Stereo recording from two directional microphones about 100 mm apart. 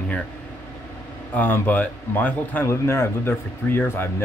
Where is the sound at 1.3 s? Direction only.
15° left (ahead or behind).